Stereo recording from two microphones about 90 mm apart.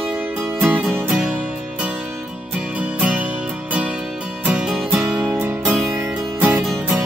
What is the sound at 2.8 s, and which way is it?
Music, 15° right (ahead or behind).